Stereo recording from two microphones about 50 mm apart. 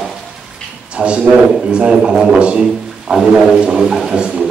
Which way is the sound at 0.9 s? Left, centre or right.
Right.